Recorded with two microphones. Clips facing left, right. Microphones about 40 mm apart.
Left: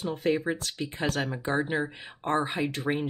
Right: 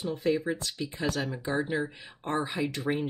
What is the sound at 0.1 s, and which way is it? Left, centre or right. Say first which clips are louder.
Speech: left 1 dB; left.